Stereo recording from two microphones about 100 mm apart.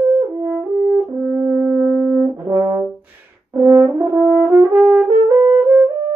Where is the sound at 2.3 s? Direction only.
30° right (ahead or behind).